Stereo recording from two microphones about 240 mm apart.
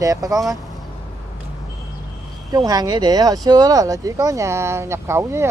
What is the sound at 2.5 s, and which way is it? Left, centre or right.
Speech, centre.